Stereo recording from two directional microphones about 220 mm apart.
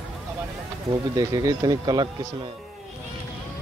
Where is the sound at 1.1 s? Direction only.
15° right (ahead or behind).